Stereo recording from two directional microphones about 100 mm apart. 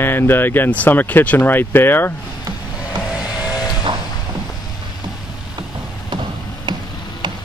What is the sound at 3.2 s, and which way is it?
Vehicle, 5° right (ahead or behind).